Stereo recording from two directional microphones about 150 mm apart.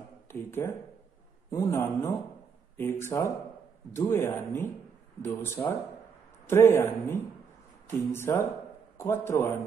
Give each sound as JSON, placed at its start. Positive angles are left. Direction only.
{"t": 0.3, "sound": "a man's voice", "side_deg": 15}